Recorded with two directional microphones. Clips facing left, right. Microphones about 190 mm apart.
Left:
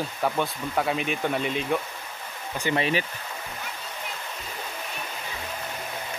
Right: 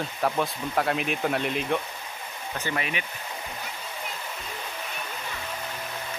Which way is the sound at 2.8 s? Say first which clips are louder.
Left 6 dB; 35° left (ahead or behind).